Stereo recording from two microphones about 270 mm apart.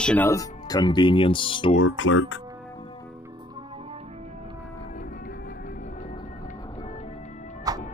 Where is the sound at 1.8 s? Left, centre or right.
Left.